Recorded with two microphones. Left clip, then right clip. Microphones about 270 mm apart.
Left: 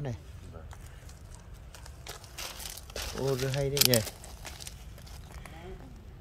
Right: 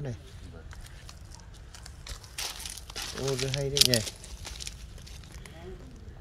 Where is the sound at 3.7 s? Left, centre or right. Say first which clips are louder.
Right 2 dB; centre.